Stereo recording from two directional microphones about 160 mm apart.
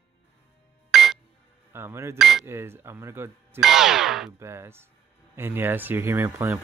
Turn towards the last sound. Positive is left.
turn(degrees=-15)  # may be behind; listen again after turning